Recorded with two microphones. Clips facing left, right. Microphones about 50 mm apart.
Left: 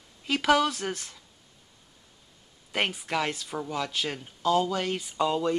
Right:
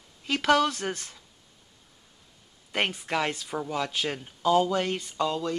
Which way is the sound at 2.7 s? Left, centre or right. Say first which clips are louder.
Right 1 dB; centre.